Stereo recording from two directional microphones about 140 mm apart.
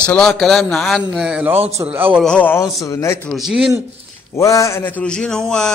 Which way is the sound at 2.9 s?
20° left (ahead or behind).